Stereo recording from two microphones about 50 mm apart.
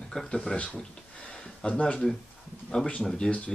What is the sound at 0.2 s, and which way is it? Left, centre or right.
Speech, centre.